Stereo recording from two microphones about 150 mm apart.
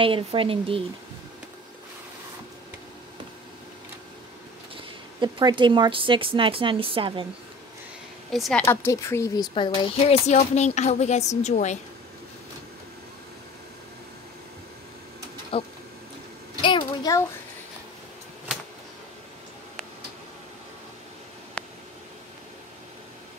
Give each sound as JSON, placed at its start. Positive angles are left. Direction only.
{"t": 0.0, "sound": "speech", "side_deg": -35}
{"t": 4.7, "sound": "speech", "side_deg": -30}
{"t": 8.3, "sound": "a woman's voice", "side_deg": 0}
{"t": 8.6, "sound": "speech", "side_deg": 20}
{"t": 9.5, "sound": "speech", "side_deg": 35}
{"t": 10.2, "sound": "a woman's voice", "side_deg": 50}
{"t": 15.5, "sound": "a sound", "side_deg": 35}